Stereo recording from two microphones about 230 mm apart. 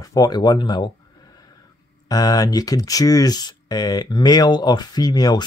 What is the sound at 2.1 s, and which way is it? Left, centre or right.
Speech, centre.